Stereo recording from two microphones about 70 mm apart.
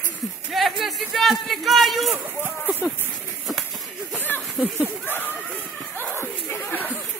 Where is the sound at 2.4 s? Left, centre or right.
Right.